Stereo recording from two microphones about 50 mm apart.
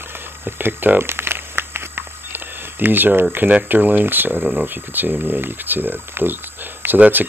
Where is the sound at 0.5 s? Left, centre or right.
Right.